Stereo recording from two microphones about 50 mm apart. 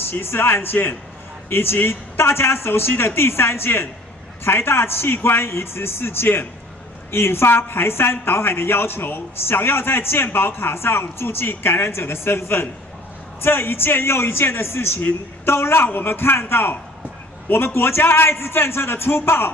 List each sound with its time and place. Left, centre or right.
0.1 s a woman's voice: left